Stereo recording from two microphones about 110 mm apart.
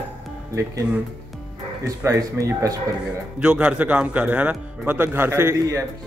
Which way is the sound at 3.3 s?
10° right (ahead or behind).